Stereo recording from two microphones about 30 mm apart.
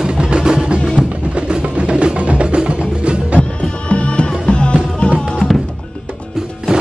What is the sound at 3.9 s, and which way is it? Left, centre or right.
Music, left.